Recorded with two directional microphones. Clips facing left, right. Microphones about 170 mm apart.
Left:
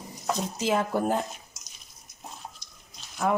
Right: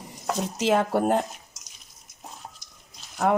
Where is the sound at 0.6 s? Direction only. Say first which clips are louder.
Right 5 dB; 70° right (ahead or behind).